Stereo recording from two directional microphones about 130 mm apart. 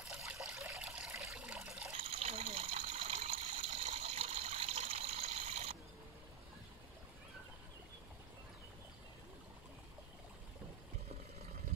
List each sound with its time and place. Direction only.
0.3 s water: 10° right (ahead or behind)
0.7 s trickle: 10° right (ahead or behind)
1.3 s water: 10° right (ahead or behind)
2.0 s water: 50° right (ahead or behind)